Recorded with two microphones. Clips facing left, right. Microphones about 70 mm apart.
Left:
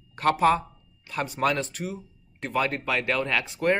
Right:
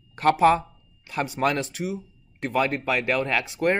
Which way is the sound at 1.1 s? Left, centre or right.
Centre.